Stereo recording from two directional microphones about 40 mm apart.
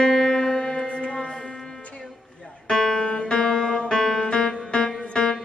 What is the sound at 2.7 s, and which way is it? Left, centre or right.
Music, centre.